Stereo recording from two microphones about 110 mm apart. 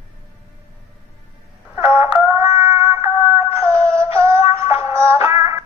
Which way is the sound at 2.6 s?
25° right (ahead or behind).